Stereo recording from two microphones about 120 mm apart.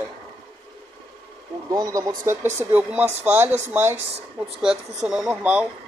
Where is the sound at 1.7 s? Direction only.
30° right (ahead or behind).